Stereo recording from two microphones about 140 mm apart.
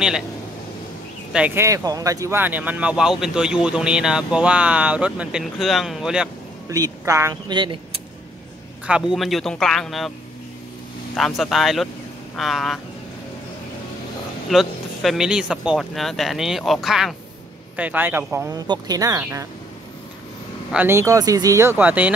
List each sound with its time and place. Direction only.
1.3 s speech: 10° right (ahead or behind)
6.7 s a woman's voice: 25° right (ahead or behind)
7.4 s speech: 35° right (ahead or behind)
8.8 s speech: 5° right (ahead or behind)
11.1 s speech: centre (ahead or behind)
14.5 s speech: centre (ahead or behind)
17.7 s speech: 10° right (ahead or behind)
20.7 s speech: 15° right (ahead or behind)